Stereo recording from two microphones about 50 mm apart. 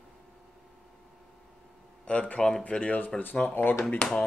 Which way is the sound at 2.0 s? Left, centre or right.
Left.